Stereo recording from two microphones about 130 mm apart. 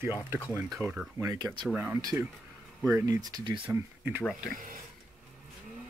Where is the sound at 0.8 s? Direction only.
15° left (ahead or behind).